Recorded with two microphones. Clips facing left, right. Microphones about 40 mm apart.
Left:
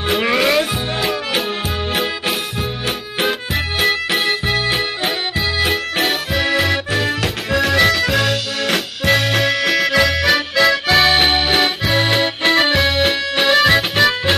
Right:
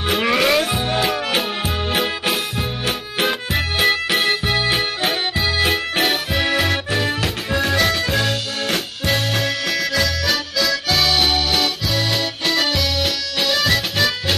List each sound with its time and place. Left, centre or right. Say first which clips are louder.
0.1 s music: left 1 dB; centre
7.9 s music: left 3 dB; centre
9.3 s music: left 5 dB; left
9.7 s accordion: left 6 dB; left